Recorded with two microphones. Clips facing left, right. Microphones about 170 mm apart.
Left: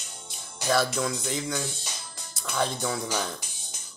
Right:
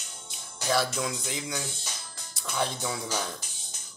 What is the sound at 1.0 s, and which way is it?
Speech, 15° right (ahead or behind).